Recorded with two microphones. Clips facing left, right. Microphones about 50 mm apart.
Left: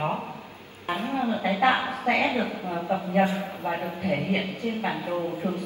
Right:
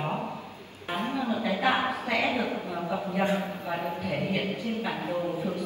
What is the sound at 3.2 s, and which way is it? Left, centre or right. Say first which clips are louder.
Speech: even; right.